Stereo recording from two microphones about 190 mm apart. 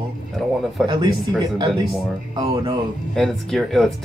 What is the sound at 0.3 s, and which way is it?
Speech, centre (ahead or behind).